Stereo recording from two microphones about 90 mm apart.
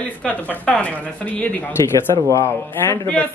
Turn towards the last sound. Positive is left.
turn(degrees=25)  # may be behind; listen again after turning